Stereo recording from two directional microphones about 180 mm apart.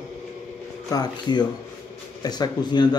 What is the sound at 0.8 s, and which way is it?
Speech, 20° left (ahead or behind).